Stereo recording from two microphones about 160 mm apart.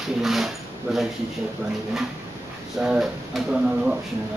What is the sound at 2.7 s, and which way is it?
Speech, 5° right (ahead or behind).